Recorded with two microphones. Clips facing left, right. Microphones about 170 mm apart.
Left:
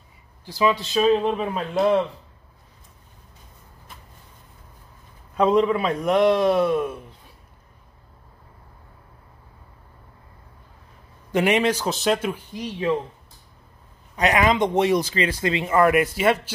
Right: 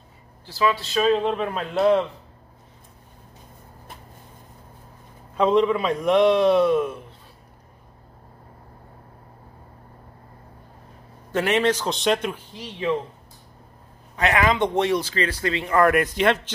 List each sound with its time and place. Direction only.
0.5 s a man's voice: 15° left (ahead or behind)
5.4 s a man's voice: 5° left (ahead or behind)
11.3 s a man's voice: 15° left (ahead or behind)
14.1 s a man's voice: 20° left (ahead or behind)
15.7 s a man's voice: 5° left (ahead or behind)